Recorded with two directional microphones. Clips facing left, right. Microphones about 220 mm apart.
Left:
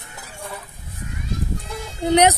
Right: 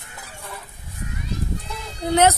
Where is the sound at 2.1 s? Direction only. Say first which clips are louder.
Left 2 dB; 15° left (ahead or behind).